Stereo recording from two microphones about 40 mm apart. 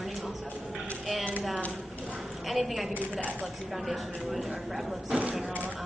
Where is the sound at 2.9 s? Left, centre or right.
Left.